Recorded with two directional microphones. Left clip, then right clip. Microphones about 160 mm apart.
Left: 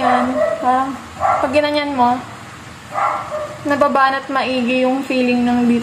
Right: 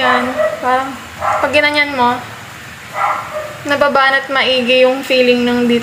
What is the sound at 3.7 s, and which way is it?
A woman's voice, 15° left (ahead or behind).